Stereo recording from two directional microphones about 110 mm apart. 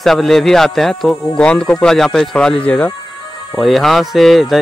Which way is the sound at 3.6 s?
Centre (ahead or behind).